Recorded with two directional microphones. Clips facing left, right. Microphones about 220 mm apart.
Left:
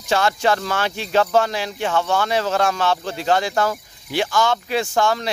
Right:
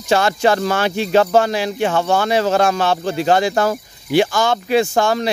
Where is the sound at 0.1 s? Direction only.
15° right (ahead or behind).